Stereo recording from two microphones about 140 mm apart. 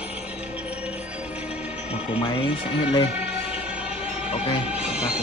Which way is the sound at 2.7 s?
40° left (ahead or behind).